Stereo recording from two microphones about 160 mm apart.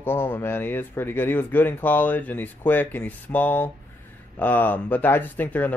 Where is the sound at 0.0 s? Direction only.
15° left (ahead or behind).